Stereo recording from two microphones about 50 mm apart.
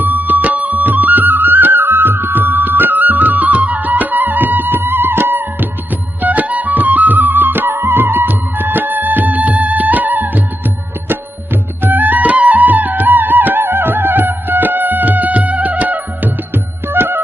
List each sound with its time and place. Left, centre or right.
0.0 s music: right
6.2 s music: right